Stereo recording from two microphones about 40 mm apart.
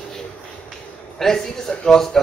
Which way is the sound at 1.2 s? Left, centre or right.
Centre.